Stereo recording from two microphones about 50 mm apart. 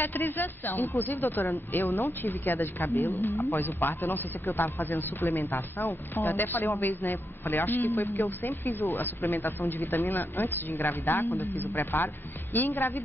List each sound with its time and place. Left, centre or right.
0.0 s speech: left
3.3 s speech: left
3.5 s a man's voice: left
9.8 s speech: left
10.0 s a man's voice: left